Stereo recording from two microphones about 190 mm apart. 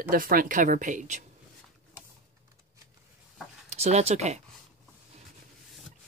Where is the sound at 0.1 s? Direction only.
50° right (ahead or behind).